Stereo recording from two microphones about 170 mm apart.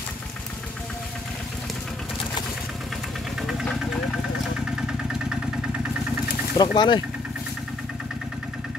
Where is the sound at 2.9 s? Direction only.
Centre (ahead or behind).